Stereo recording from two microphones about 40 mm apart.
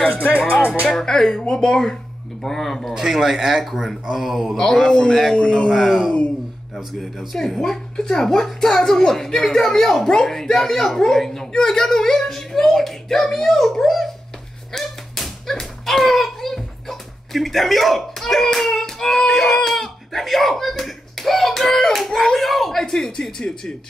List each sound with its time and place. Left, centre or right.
0.5 s speech: left
0.9 s speech: centre
2.9 s speech: centre
4.6 s speech: centre
5.7 s speech: centre
14.7 s a sound: centre
19.3 s speech: centre